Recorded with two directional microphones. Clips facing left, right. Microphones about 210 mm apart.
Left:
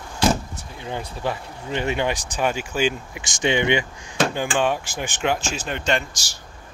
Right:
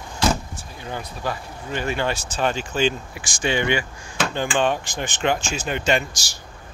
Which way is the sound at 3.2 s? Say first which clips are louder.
Left 2 dB; 20° left (ahead or behind).